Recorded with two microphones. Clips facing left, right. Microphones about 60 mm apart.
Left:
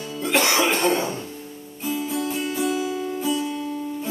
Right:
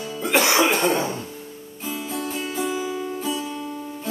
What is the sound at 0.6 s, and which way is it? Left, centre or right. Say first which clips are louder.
Cough: right 1 dB; right.